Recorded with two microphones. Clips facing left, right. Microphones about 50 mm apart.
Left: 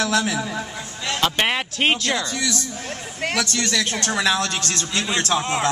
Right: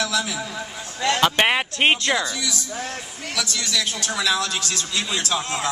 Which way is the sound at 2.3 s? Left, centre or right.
Left.